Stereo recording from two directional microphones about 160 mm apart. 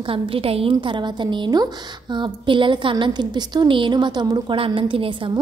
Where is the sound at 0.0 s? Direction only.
35° right (ahead or behind).